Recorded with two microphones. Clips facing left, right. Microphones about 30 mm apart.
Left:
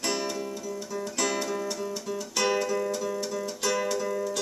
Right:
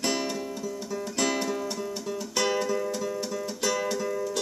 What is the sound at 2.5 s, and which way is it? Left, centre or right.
Music, centre.